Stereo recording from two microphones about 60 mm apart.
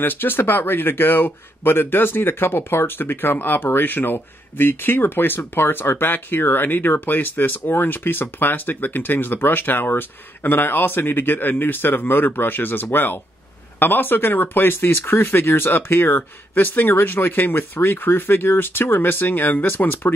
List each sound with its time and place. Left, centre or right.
0.0 s speech: left